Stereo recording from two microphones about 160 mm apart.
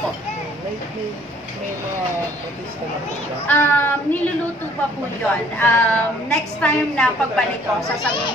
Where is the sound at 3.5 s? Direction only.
15° left (ahead or behind).